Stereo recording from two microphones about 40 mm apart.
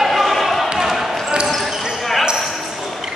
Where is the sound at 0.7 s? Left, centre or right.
Centre.